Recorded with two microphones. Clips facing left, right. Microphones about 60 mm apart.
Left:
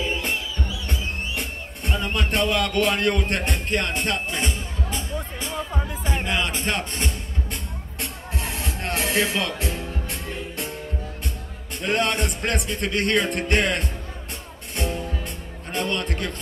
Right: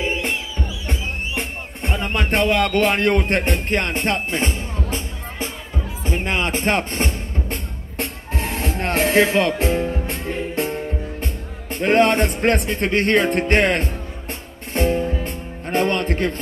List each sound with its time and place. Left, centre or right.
0.8 s music: right
11.7 s speech: right
14.7 s music: right